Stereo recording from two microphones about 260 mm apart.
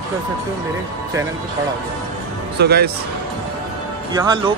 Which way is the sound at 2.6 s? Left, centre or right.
Right.